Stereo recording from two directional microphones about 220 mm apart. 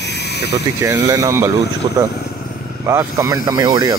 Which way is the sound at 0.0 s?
50° left (ahead or behind).